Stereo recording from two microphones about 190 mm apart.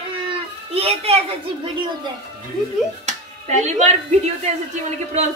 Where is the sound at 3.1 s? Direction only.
40° right (ahead or behind).